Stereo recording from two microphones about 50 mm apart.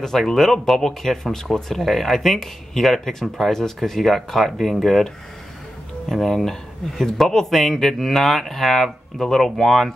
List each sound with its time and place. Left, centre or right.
0.0 s speech: centre